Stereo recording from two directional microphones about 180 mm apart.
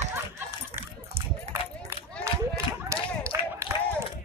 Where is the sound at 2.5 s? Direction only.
15° right (ahead or behind).